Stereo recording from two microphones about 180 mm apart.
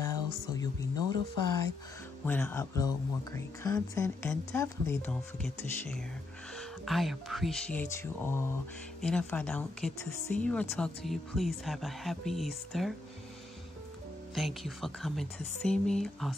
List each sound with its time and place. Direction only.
0.0 s a sound: 20° left (ahead or behind)
2.2 s speech: 10° left (ahead or behind)
6.9 s speech: centre (ahead or behind)
14.3 s speech: centre (ahead or behind)